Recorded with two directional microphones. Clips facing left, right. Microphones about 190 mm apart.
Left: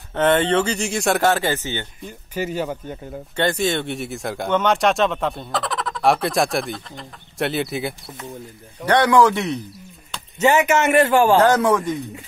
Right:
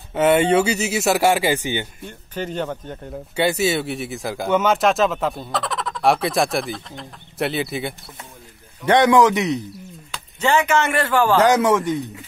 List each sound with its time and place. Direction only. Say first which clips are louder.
0.1 s speech: right 2 dB; 10° right (ahead or behind)
2.0 s speech: left 2 dB; 5° left (ahead or behind)
3.3 s speech: right 1 dB; 10° right (ahead or behind)
8.8 s a man's voice: right 1 dB; 20° right (ahead or behind)
10.4 s a man's voice: left 2 dB; 20° left (ahead or behind)
11.5 s speech: right 1 dB; centre (ahead or behind)